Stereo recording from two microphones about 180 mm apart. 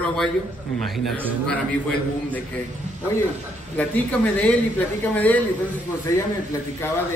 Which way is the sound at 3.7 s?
10° left (ahead or behind).